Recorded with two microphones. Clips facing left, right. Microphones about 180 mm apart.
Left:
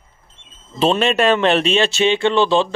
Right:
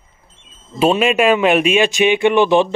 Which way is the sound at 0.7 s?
10° right (ahead or behind).